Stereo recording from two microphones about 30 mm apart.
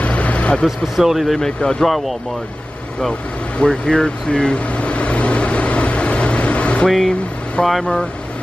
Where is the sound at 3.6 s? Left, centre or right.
Left.